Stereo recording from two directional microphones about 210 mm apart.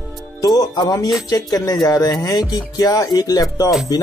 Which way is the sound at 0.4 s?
20° left (ahead or behind).